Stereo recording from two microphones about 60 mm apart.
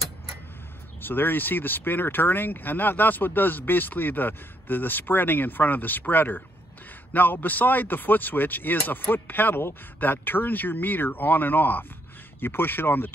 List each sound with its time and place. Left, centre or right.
1.0 s speech: left